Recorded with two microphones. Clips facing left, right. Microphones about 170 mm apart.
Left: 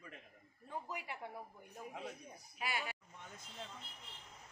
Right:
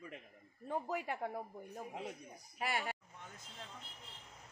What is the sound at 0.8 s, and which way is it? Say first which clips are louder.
Speech: right 7 dB; 50° right (ahead or behind).